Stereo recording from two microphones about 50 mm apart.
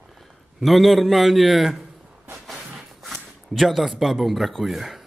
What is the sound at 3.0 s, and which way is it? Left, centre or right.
Speech, centre.